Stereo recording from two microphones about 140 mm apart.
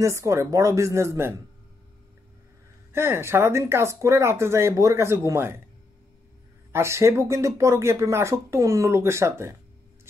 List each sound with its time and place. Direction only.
0.0 s speech: 20° right (ahead or behind)
2.9 s speech: 15° right (ahead or behind)
6.7 s speech: 20° right (ahead or behind)